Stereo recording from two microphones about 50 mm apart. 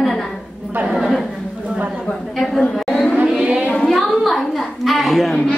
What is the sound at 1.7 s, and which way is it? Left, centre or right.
Speech, right.